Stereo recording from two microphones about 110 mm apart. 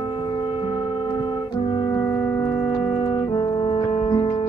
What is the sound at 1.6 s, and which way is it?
Organ, 45° left (ahead or behind).